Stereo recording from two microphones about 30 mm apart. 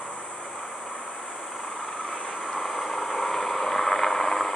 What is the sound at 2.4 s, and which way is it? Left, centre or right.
Vehicle, centre.